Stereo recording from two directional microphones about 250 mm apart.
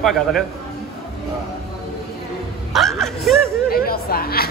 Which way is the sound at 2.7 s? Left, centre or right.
Centre.